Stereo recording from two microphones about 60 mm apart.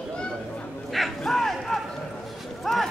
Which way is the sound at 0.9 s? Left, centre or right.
Centre.